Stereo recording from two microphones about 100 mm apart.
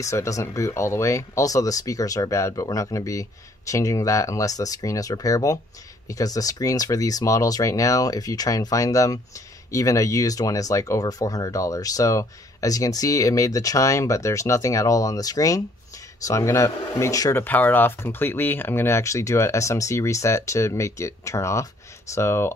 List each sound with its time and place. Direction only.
0.0 s speech: 30° left (ahead or behind)